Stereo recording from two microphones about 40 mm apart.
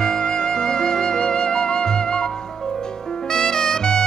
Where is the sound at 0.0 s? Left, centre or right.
Centre.